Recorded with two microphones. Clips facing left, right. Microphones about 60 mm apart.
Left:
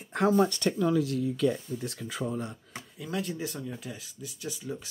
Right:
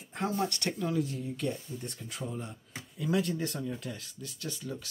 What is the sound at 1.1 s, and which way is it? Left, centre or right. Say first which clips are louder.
Speech: left 7 dB; left.